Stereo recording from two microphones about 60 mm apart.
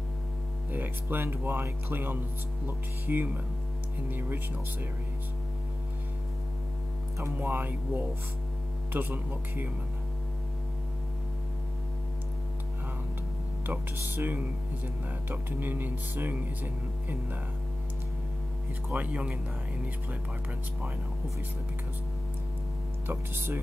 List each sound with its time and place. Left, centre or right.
0.7 s speech: right
7.3 s speech: right
13.7 s speech: right
18.9 s speech: right
23.0 s speech: right